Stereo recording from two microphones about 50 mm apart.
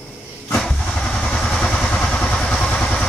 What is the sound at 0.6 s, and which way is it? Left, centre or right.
Vehicle, centre.